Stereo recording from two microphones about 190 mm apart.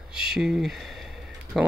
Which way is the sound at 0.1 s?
5° right (ahead or behind).